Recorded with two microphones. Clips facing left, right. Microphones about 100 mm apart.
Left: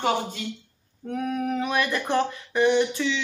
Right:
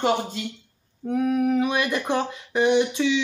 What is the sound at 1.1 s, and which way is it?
Speech, 10° right (ahead or behind).